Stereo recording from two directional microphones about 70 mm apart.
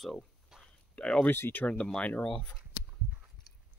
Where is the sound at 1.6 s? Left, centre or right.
Centre.